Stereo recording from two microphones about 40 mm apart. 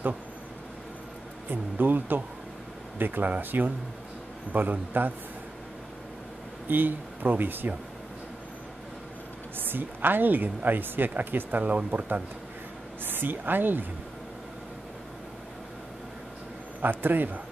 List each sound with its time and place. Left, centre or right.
1.5 s speech: right
6.7 s speech: right
9.6 s speech: right
11.6 s speech: right
13.0 s speech: right
17.0 s speech: right